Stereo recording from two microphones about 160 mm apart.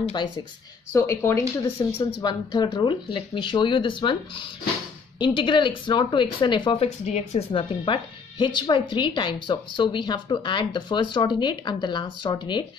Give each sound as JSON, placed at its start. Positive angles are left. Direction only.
{"t": 0.0, "sound": "speech", "side_deg": 30}
{"t": 0.9, "sound": "speech", "side_deg": 15}
{"t": 2.0, "sound": "speech", "side_deg": 25}